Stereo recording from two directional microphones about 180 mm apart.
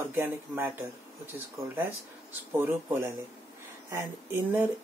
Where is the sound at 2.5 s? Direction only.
10° right (ahead or behind).